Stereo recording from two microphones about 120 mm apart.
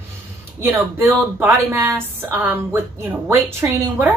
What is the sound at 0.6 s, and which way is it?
A woman's voice, 20° right (ahead or behind).